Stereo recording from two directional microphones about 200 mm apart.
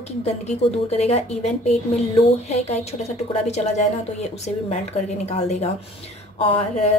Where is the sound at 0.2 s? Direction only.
30° left (ahead or behind).